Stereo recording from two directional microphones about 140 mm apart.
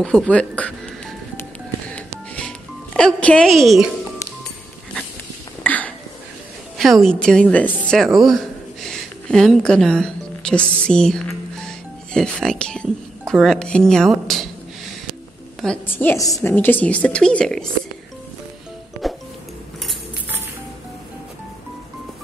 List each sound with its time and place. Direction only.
0.0 s music: 5° left (ahead or behind)
5.6 s a sound: 10° left (ahead or behind)
6.8 s a woman's voice: centre (ahead or behind)
15.6 s a woman's voice: 10° left (ahead or behind)
16.2 s a woman's voice: 25° left (ahead or behind)
16.5 s a woman's voice: 15° left (ahead or behind)
19.0 s music: centre (ahead or behind)